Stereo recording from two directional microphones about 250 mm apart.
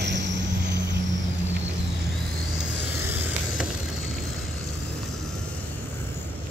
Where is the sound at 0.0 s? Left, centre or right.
Right.